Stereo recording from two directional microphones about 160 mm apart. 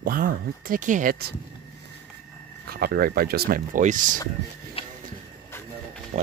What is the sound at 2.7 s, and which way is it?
Speech, 70° right (ahead or behind).